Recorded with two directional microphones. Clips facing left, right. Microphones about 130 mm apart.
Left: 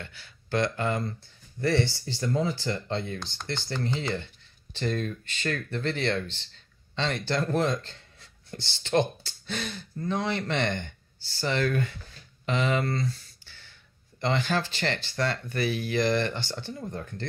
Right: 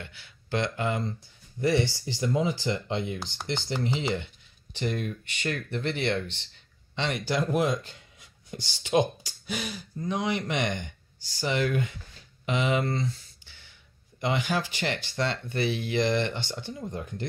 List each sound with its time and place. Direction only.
0.0 s speech: 15° right (ahead or behind)
12.4 s a sound: 15° right (ahead or behind)
14.2 s speech: 15° right (ahead or behind)